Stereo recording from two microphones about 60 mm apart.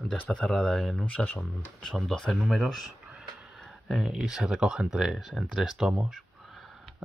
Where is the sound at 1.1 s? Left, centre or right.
Left.